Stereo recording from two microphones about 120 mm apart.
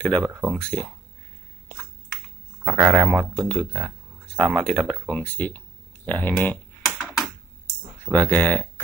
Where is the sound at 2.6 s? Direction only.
Centre (ahead or behind).